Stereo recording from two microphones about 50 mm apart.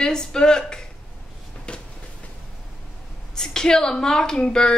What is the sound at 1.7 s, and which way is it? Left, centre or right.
Train, left.